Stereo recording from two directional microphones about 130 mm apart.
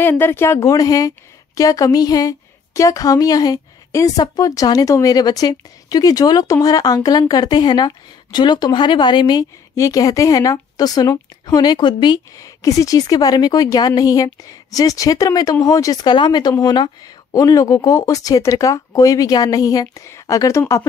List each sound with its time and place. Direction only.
0.0 s a woman's voice: 15° left (ahead or behind)